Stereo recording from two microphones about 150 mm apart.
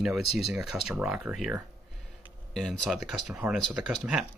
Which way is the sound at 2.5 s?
5° left (ahead or behind).